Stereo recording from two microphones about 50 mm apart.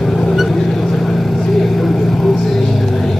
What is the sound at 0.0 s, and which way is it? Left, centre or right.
Vehicle, centre.